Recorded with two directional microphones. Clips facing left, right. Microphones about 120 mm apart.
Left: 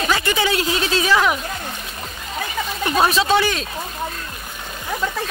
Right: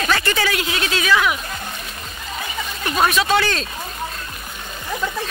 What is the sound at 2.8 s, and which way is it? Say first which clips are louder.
Speech: left 1 dB; 25° left (ahead or behind).